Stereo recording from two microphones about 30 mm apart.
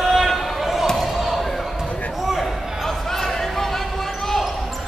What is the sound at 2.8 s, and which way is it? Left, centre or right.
Basketball bounce, centre.